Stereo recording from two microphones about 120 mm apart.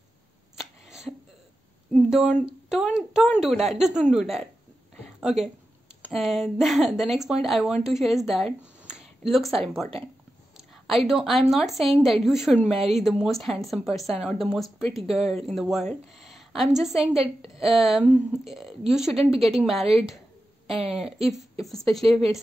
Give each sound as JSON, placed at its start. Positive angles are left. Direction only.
{"t": 0.6, "sound": "a sound", "side_deg": -5}
{"t": 2.0, "sound": "a woman's voice", "side_deg": -5}
{"t": 20.8, "sound": "speech", "side_deg": -60}
{"t": 21.6, "sound": "speech", "side_deg": 0}